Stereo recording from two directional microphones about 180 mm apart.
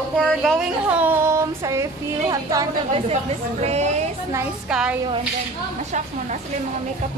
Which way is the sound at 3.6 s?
35° right (ahead or behind).